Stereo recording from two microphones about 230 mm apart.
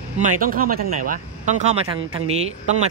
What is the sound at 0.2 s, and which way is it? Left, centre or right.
Speech, right.